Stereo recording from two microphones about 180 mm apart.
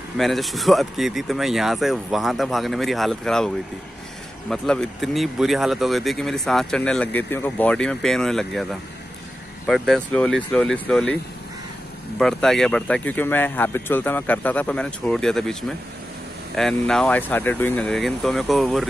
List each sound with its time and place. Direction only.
0.2 s speech: centre (ahead or behind)
9.7 s speech: centre (ahead or behind)
12.2 s speech: centre (ahead or behind)
16.5 s speech: centre (ahead or behind)